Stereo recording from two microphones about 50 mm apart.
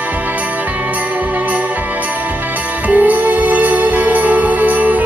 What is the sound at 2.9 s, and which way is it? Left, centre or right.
Music, right.